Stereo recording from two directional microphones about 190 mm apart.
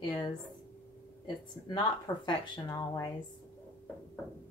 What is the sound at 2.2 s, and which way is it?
Speech, 25° left (ahead or behind).